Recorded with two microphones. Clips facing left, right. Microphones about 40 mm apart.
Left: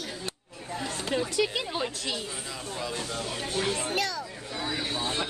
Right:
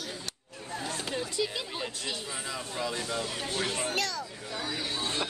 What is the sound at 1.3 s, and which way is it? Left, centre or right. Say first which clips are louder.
Speech: left 5 dB; left.